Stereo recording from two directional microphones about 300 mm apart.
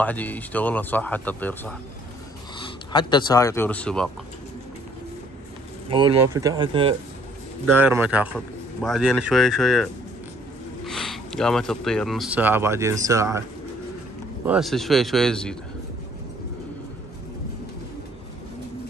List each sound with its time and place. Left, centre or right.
0.0 s speech: centre
5.9 s speech: centre
7.6 s speech: centre
10.9 s speech: centre
14.4 s speech: centre